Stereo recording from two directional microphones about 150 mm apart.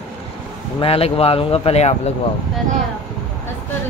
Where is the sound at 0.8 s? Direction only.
40° left (ahead or behind).